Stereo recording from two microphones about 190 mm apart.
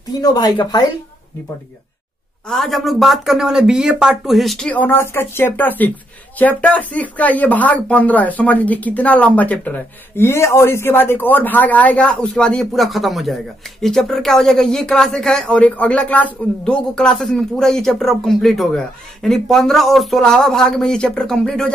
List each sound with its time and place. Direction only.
0.1 s speech: 20° left (ahead or behind)
2.4 s speech: centre (ahead or behind)